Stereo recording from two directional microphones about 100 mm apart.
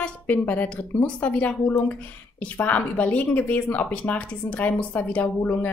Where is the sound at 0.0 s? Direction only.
15° left (ahead or behind).